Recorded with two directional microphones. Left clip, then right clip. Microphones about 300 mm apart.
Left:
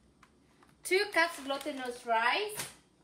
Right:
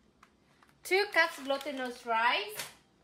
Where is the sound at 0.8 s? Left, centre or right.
Centre.